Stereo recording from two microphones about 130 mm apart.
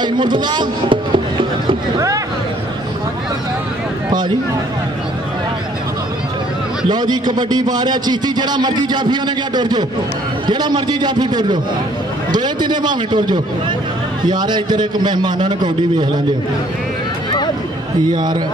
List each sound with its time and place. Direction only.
0.0 s a man's voice: 35° right (ahead or behind)
6.9 s a man's voice: 35° right (ahead or behind)
18.1 s a man's voice: 35° right (ahead or behind)